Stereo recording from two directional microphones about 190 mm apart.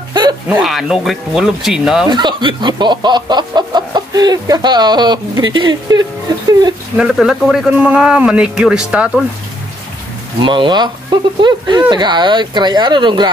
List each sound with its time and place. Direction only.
0.1 s a sound: 25° right (ahead or behind)
0.5 s a man's voice: centre (ahead or behind)
2.0 s speech: 25° right (ahead or behind)
7.0 s a man's voice: 5° right (ahead or behind)
10.4 s speech: 25° right (ahead or behind)